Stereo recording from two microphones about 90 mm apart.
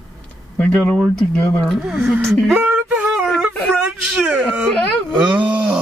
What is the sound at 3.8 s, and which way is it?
Speech, 10° right (ahead or behind).